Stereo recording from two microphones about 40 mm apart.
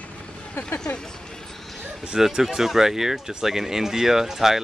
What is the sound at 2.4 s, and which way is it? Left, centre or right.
Speech, centre.